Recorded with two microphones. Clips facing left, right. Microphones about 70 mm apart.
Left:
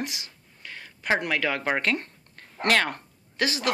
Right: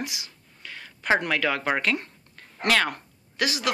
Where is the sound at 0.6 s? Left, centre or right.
Left.